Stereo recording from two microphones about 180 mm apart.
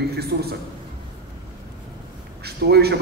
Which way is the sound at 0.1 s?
60° right (ahead or behind).